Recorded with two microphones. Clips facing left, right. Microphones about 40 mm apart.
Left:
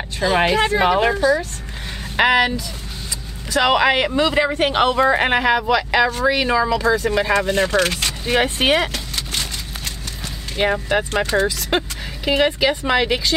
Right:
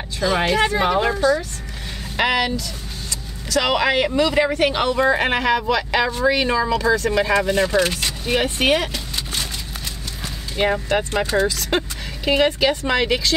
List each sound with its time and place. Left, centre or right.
0.2 s speech: left
0.6 s a woman's voice: centre
0.8 s a woman's voice: left
7.4 s speech: left
7.8 s speech: left
8.5 s speech: left
8.9 s a sound: left
10.6 s a woman's voice: centre